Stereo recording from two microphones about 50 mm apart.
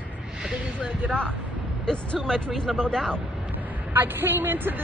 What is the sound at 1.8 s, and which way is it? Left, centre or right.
Speech, left.